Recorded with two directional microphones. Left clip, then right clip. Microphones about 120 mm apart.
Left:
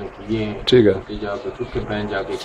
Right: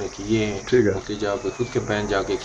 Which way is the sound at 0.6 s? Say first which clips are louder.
Left 7 dB; 30° left (ahead or behind).